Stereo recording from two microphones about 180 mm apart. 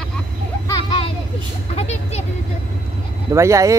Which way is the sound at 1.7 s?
35° left (ahead or behind).